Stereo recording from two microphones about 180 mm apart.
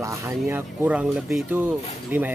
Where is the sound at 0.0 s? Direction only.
15° right (ahead or behind).